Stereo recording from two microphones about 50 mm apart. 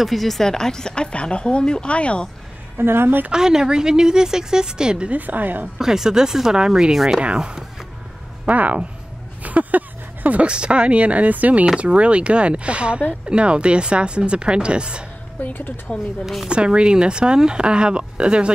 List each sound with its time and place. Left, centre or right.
0.0 s speech: centre; by 2.2 s left
2.8 s a woman's voice: right
3.3 s speech: centre
5.1 s a woman's voice: right
5.8 s speech: centre
8.5 s a woman's voice: right
11.6 s speech: centre
15.4 s speech: left
16.4 s speech: centre